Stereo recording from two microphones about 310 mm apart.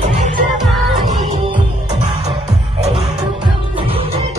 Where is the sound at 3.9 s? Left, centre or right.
Centre.